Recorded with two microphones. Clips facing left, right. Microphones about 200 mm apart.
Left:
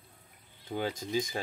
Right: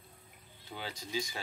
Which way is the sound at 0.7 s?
50° left (ahead or behind).